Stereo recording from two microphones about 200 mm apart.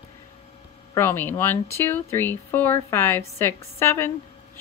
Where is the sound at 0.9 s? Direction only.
10° left (ahead or behind).